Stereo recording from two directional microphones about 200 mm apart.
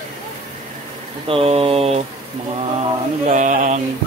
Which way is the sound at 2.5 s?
35° right (ahead or behind).